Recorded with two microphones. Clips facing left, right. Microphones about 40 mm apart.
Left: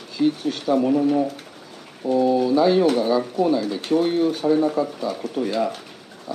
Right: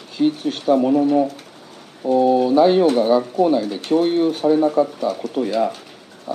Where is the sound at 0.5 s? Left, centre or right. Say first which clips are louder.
Right 3 dB; centre.